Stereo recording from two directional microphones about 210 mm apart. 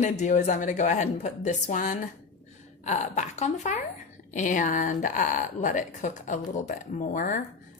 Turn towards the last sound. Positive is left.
turn(degrees=40)  # may be behind; listen again after turning